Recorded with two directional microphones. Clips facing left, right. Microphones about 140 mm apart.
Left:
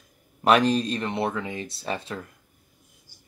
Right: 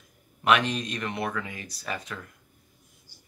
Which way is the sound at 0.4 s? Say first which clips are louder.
Left 4 dB; 35° left (ahead or behind).